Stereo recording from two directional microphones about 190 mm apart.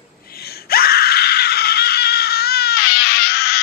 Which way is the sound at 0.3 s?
55° left (ahead or behind).